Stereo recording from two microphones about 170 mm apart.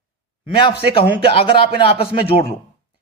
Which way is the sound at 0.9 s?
30° left (ahead or behind).